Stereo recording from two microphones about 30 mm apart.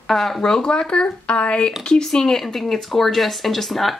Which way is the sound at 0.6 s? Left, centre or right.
Left.